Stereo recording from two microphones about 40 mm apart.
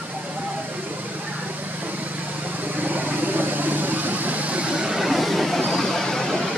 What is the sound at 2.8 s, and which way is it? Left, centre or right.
Vehicle, right.